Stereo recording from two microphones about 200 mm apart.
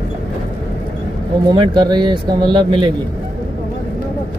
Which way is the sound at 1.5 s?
20° right (ahead or behind).